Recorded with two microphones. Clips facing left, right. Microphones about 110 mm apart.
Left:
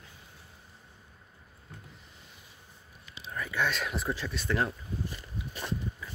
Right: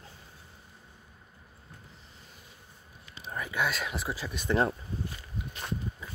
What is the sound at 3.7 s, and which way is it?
Speech, 5° right (ahead or behind).